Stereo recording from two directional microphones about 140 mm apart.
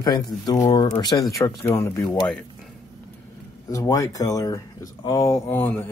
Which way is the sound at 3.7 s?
25° left (ahead or behind).